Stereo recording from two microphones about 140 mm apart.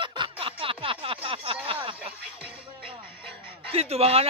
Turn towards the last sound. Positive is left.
turn(degrees=-45)  # may be behind; listen again after turning